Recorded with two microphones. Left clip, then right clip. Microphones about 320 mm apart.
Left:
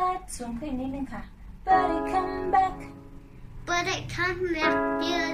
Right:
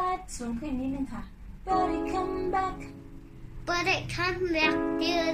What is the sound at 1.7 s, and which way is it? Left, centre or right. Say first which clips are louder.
Music: left 1 dB; left.